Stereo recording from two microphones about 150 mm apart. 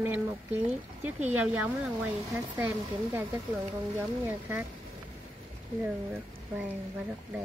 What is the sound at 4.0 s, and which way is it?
Speech, 15° right (ahead or behind).